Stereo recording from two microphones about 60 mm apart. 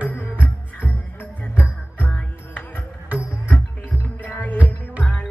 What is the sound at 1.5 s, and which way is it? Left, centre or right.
Music, left.